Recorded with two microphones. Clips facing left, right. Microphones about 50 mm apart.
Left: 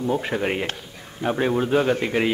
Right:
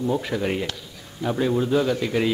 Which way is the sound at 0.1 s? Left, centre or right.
Left.